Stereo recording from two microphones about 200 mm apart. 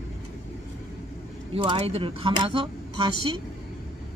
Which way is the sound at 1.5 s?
30° right (ahead or behind).